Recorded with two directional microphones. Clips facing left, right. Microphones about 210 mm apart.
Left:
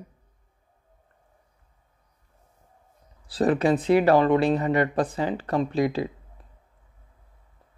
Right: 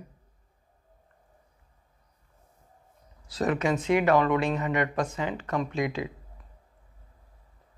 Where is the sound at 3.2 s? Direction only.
30° left (ahead or behind).